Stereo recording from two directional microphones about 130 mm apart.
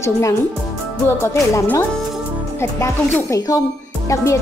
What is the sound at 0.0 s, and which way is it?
Speech, 25° left (ahead or behind).